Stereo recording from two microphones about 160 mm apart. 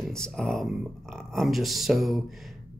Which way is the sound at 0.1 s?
5° left (ahead or behind).